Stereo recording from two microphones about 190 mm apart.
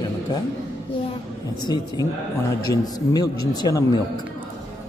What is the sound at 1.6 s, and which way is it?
Speech, 20° left (ahead or behind).